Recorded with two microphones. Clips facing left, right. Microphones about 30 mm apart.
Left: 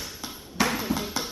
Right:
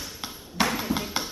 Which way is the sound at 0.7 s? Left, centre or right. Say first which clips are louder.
Even; centre.